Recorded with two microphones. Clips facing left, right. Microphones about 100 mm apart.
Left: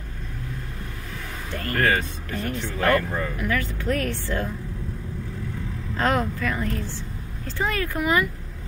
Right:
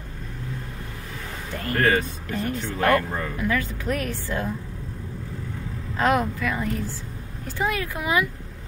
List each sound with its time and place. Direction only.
1.5 s speech: 15° right (ahead or behind)
5.9 s speech: 15° right (ahead or behind)